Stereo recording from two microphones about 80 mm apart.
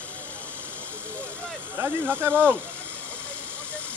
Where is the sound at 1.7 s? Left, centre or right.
Right.